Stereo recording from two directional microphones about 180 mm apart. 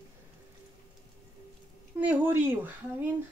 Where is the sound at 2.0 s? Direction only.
10° right (ahead or behind).